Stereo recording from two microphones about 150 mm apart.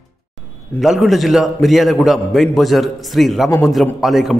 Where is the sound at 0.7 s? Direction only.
Centre (ahead or behind).